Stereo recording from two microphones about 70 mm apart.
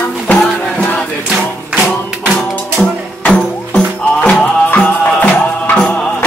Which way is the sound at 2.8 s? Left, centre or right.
Centre.